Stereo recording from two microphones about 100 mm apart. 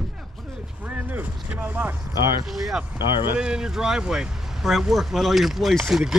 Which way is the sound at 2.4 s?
Centre (ahead or behind).